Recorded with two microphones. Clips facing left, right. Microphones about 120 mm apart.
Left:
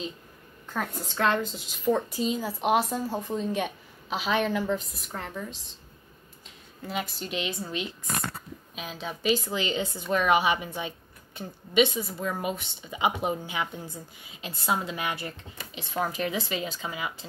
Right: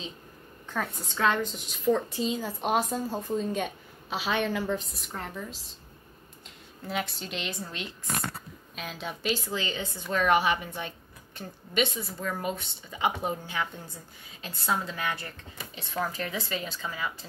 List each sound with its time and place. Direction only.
0.7 s a woman's voice: centre (ahead or behind)
6.9 s a woman's voice: centre (ahead or behind)
9.6 s a woman's voice: 15° left (ahead or behind)